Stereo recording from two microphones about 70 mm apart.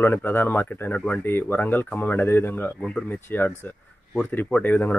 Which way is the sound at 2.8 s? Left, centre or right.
Centre.